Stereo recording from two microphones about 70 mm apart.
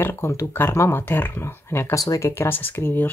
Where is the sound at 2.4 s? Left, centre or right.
Left.